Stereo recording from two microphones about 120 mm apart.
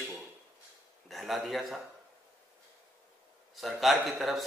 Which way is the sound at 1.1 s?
Centre (ahead or behind).